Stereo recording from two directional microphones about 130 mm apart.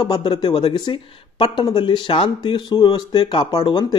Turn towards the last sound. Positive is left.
turn(degrees=35)  # may be behind; listen again after turning